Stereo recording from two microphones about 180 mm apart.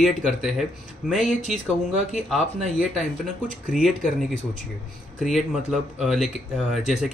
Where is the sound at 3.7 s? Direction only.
Centre (ahead or behind).